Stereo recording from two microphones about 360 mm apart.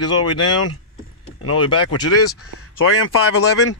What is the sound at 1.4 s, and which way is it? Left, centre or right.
Speech, left.